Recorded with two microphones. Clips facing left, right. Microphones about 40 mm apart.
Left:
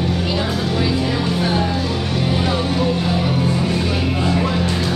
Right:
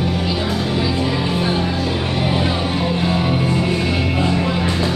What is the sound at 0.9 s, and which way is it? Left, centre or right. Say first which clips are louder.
Music: even; centre.